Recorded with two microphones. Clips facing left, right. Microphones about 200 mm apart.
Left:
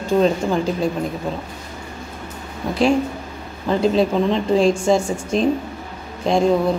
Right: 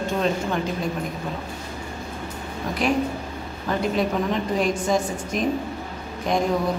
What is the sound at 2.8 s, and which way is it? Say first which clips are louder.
A woman's voice: left 5 dB; 30° left (ahead or behind).